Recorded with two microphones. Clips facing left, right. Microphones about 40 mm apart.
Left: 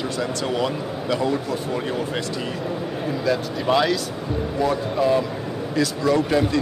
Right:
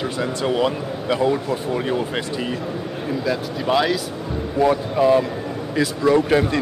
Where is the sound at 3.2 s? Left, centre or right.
Centre.